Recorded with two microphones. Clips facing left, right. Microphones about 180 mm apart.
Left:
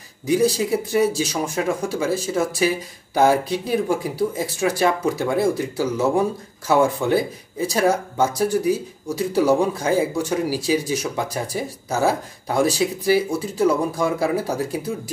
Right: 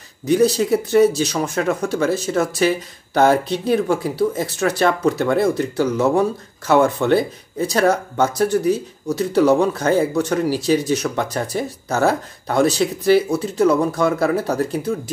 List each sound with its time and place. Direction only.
0.3 s speech: 10° left (ahead or behind)